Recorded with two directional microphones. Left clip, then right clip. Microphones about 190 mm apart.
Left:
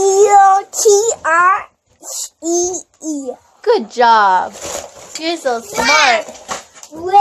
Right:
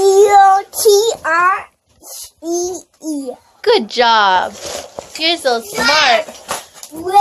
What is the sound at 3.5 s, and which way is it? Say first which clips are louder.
A child's voice: right 1 dB; 10° right (ahead or behind).